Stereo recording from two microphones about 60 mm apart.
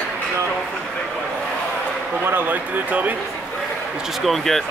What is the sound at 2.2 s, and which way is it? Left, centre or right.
Speech, right.